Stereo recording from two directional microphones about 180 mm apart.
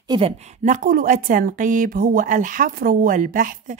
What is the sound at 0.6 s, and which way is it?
Speech, 45° right (ahead or behind).